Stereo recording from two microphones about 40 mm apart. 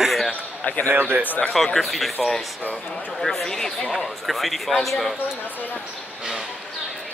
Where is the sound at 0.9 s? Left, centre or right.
Right.